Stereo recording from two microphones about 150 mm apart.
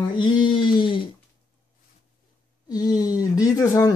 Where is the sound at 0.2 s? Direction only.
30° left (ahead or behind).